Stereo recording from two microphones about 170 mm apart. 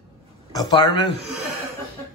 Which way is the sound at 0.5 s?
25° left (ahead or behind).